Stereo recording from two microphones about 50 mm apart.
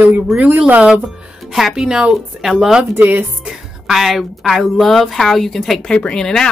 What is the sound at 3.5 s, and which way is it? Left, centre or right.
Speech, centre.